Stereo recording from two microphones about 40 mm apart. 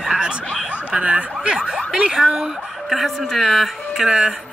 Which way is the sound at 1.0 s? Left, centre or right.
Right.